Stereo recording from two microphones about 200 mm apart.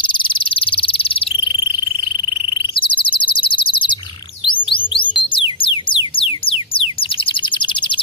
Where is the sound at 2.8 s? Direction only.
25° left (ahead or behind).